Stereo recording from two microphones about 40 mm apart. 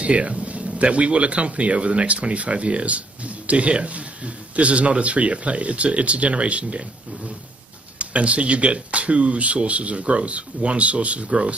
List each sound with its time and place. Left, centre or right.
0.0 s speech: right
8.0 s speech: right